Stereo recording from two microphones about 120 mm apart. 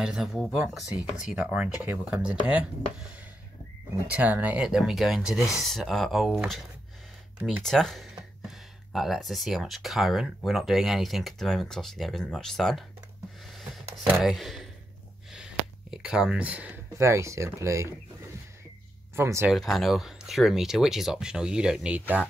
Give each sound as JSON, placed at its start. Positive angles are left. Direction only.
{"t": 0.0, "sound": "speech", "side_deg": -5}
{"t": 4.1, "sound": "speech", "side_deg": -10}
{"t": 13.6, "sound": "a sound", "side_deg": 0}
{"t": 17.0, "sound": "speech", "side_deg": -25}
{"t": 19.1, "sound": "speech", "side_deg": -25}
{"t": 19.5, "sound": "speech", "side_deg": 0}